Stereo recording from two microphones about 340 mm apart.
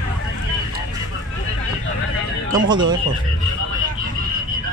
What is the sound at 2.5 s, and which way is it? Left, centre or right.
Speech, centre.